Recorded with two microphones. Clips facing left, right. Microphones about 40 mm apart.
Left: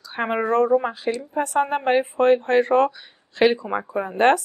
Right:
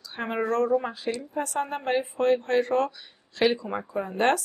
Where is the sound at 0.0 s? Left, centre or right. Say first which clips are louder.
Left 5 dB; left.